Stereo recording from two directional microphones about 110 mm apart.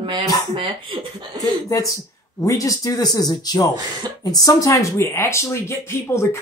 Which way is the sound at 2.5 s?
30° left (ahead or behind).